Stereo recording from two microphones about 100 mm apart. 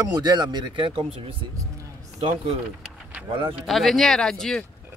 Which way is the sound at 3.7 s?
Centre (ahead or behind).